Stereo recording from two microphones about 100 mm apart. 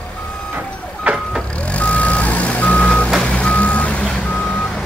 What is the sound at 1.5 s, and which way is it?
Vehicle, 15° left (ahead or behind).